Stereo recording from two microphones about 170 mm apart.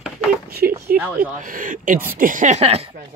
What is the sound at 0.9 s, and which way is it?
Speech, 10° right (ahead or behind).